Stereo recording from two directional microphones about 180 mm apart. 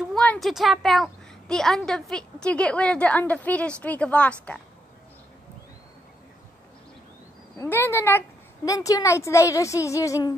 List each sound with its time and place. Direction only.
0.1 s a woman's voice: 5° left (ahead or behind)
7.5 s a woman's voice: 15° left (ahead or behind)